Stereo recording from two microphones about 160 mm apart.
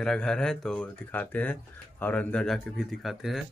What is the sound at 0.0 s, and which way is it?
Speech, 5° left (ahead or behind).